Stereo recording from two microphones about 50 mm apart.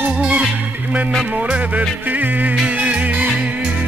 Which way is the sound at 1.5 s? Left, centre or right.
Right.